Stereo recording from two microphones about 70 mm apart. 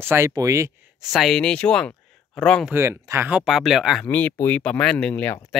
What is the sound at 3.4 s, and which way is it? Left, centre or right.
Speech, centre.